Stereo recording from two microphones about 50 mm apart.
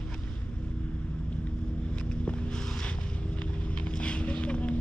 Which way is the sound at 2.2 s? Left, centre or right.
Left.